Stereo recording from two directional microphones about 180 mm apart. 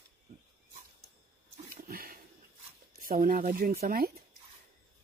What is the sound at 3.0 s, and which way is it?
Speech, 50° right (ahead or behind).